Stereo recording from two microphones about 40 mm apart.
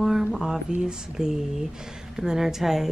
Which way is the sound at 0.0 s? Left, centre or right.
Centre.